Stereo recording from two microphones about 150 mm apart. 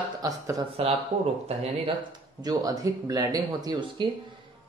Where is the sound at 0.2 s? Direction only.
25° right (ahead or behind).